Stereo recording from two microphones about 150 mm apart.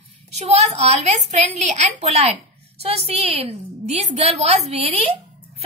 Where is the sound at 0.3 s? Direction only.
45° right (ahead or behind).